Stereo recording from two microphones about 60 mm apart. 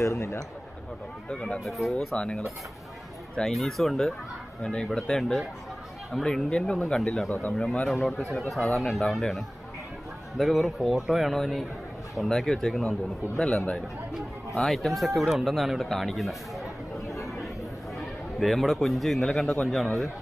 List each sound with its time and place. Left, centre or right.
0.0 s speech: left
1.3 s speech: centre
1.6 s speech: centre
2.1 s speech: centre
3.5 s speech: centre
17.0 s a sound: left
17.9 s a man's voice: centre